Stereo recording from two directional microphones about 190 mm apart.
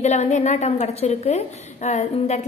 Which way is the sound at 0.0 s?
35° left (ahead or behind).